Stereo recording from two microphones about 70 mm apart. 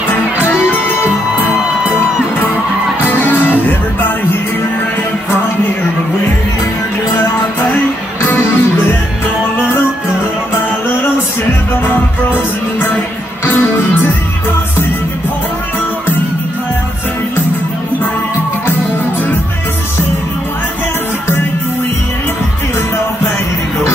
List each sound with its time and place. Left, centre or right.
0.1 s music: left
3.0 s music: left
8.2 s music: left
11.8 s music: left